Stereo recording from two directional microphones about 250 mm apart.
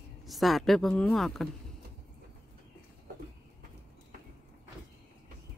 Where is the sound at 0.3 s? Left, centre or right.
Centre.